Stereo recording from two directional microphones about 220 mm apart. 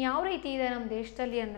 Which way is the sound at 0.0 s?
15° left (ahead or behind).